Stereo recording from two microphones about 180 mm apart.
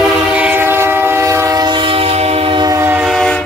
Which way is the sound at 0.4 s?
10° right (ahead or behind).